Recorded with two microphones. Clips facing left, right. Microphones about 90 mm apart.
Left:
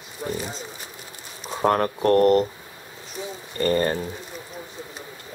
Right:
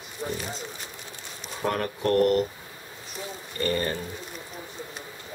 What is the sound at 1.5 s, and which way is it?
Speech, 40° left (ahead or behind).